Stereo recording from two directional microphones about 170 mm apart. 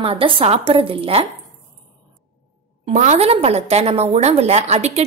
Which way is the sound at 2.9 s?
45° right (ahead or behind).